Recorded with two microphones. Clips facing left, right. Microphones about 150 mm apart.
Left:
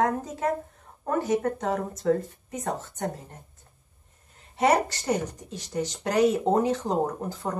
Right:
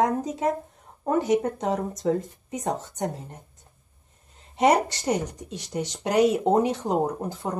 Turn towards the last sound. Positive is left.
turn(degrees=-15)  # may be behind; listen again after turning